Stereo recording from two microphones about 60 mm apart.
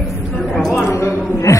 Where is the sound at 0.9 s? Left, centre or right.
Left.